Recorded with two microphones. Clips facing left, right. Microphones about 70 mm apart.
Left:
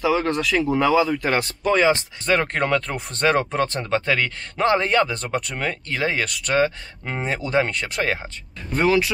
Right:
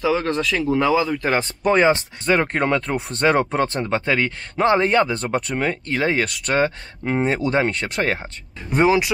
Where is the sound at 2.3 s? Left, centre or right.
Right.